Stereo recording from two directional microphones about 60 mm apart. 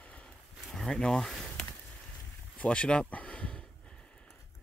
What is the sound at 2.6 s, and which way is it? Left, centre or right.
Speech, left.